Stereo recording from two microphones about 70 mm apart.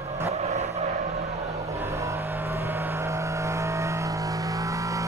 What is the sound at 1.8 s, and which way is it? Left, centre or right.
Vehicle, right.